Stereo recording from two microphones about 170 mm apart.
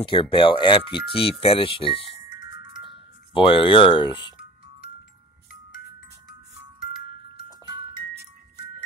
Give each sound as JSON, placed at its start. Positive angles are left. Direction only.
{"t": 0.0, "sound": "speech", "side_deg": 30}
{"t": 3.3, "sound": "speech", "side_deg": 30}
{"t": 7.3, "sound": "music", "side_deg": -25}